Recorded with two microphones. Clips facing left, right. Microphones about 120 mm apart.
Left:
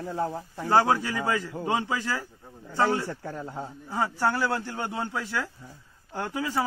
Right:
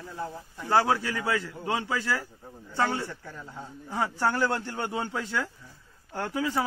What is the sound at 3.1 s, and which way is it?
Speech, 45° left (ahead or behind).